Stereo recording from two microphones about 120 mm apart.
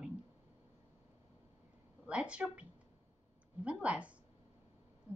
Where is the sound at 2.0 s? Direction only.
10° right (ahead or behind).